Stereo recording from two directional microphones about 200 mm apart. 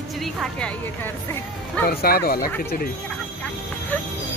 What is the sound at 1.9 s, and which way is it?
Speech, 50° left (ahead or behind).